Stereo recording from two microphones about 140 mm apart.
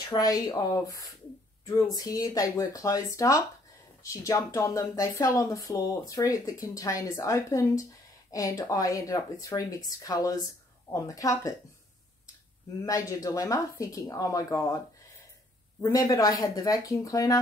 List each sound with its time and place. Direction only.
0.1 s a woman's voice: 25° left (ahead or behind)
12.8 s a woman's voice: 25° left (ahead or behind)
15.8 s a woman's voice: 25° left (ahead or behind)